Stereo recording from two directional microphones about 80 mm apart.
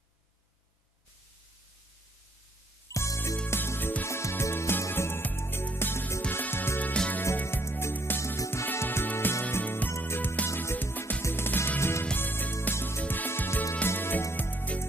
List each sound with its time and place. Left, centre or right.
2.9 s music: left
3.4 s music: left
6.9 s music: centre
7.4 s music: left